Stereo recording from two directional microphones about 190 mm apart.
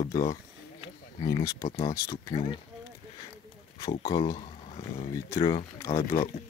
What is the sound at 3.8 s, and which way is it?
Speech, 25° left (ahead or behind).